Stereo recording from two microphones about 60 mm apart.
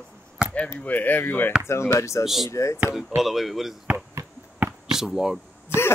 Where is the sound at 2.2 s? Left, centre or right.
Centre.